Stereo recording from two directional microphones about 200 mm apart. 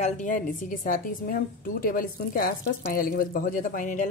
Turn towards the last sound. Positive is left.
turn(degrees=40)  # may be behind; listen again after turning